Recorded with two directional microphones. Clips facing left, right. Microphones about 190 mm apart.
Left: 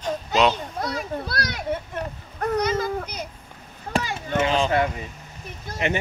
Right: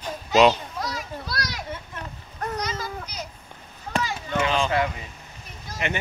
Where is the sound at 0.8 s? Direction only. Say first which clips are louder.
Left 5 dB; 55° left (ahead or behind).